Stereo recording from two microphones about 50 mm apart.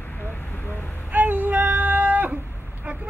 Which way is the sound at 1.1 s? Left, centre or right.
Right.